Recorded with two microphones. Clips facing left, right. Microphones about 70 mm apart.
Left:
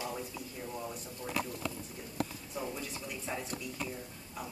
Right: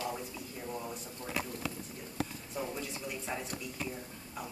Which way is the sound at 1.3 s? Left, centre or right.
Centre.